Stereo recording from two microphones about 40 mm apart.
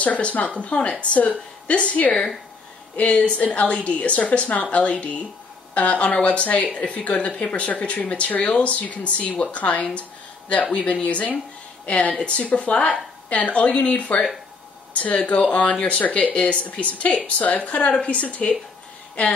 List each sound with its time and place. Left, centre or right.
0.0 s a woman's voice: left
15.2 s speech: left